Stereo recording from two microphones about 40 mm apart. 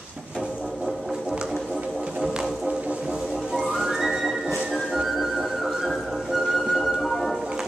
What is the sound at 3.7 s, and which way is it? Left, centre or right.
Music, centre.